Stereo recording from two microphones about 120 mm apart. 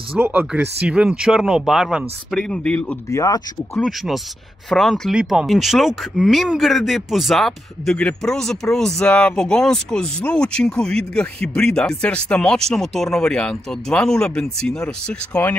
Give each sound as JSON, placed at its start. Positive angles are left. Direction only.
{"t": 0.2, "sound": "speech", "side_deg": -15}
{"t": 2.3, "sound": "speech", "side_deg": 10}
{"t": 3.1, "sound": "speech", "side_deg": 30}
{"t": 3.7, "sound": "speech", "side_deg": 0}